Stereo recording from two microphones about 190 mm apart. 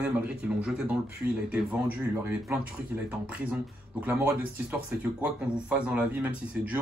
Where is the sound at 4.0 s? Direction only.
10° right (ahead or behind).